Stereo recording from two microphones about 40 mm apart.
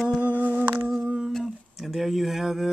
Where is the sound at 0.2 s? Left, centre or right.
Right.